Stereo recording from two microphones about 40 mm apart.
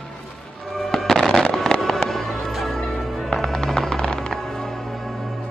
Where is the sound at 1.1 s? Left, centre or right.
Centre.